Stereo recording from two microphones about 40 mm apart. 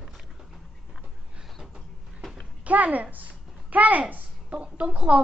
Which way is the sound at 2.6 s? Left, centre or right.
Right.